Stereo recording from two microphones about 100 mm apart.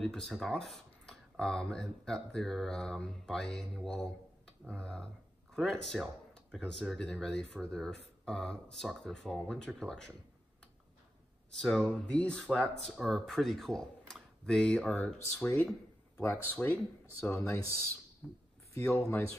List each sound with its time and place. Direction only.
0.0 s speech: 5° left (ahead or behind)
11.6 s speech: 5° left (ahead or behind)
18.9 s speech: 25° left (ahead or behind)